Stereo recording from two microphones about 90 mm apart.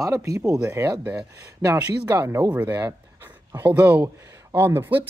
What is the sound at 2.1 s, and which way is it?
Speech, 35° right (ahead or behind).